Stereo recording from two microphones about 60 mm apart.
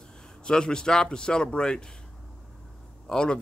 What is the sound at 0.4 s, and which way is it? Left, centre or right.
Speech, centre.